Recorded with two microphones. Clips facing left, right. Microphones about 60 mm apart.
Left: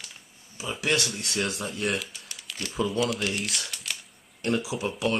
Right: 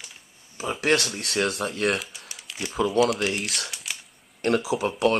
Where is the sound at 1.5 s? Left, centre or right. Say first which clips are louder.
Right 5 dB; right.